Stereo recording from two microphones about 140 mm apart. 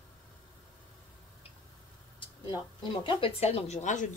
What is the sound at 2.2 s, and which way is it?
Speech, 35° left (ahead or behind).